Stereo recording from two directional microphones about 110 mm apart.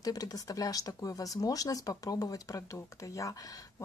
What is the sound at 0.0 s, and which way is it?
Speech, 35° left (ahead or behind).